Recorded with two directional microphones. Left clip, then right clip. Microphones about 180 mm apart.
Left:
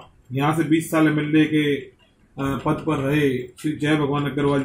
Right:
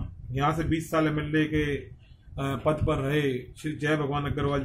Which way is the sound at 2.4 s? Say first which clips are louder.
Left 3 dB; 20° right (ahead or behind).